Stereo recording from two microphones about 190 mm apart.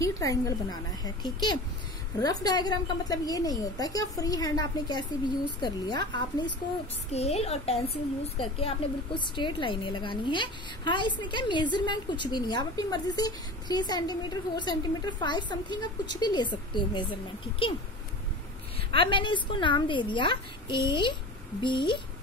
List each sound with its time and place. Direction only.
0.0 s a woman's voice: 15° left (ahead or behind)
7.1 s a woman's voice: 35° left (ahead or behind)
18.9 s a woman's voice: 25° left (ahead or behind)